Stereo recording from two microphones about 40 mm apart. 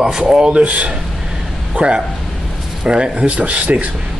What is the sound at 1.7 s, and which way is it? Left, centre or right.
A man's voice, right.